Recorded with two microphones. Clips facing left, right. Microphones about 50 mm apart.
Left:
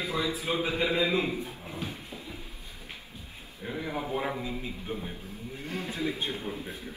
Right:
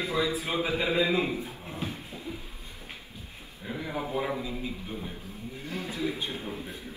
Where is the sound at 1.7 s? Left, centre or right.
Right.